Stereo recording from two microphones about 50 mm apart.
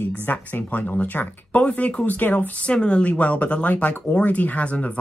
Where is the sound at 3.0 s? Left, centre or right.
Left.